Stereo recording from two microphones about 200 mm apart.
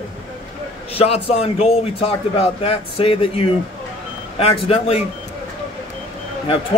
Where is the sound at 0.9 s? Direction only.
30° left (ahead or behind).